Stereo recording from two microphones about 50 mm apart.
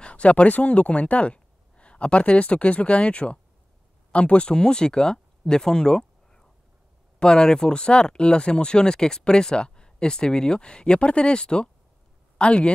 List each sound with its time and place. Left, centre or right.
0.0 s speech: left